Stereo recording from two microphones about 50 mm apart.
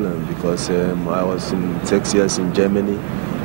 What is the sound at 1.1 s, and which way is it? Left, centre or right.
Speech, centre.